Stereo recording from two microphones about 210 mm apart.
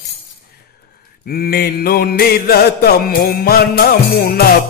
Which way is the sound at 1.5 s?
45° left (ahead or behind).